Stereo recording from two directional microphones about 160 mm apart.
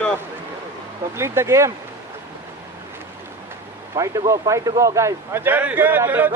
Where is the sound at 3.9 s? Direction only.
20° right (ahead or behind).